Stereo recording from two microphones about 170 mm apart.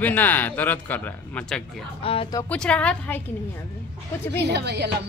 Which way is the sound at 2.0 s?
35° left (ahead or behind).